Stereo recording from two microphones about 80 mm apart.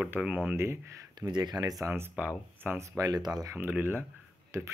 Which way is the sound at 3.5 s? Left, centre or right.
Right.